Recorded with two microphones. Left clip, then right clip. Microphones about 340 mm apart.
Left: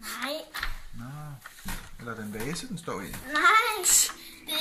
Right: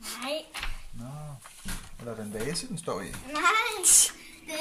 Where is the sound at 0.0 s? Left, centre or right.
Centre.